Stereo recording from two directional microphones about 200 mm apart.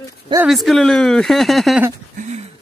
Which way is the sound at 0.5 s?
Centre (ahead or behind).